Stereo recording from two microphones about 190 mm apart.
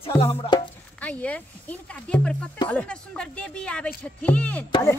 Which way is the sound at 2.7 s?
5° left (ahead or behind).